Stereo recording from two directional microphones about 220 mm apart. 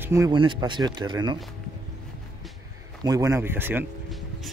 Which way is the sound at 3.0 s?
15° right (ahead or behind).